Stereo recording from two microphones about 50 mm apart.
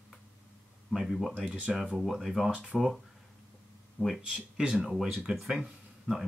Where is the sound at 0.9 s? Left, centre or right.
Centre.